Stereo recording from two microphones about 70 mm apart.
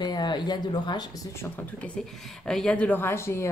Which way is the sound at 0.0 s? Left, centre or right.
Left.